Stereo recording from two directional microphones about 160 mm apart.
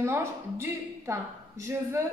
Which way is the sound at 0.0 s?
15° right (ahead or behind).